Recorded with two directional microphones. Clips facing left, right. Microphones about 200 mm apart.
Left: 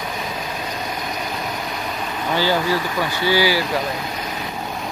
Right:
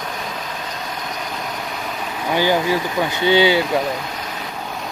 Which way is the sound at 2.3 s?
15° right (ahead or behind).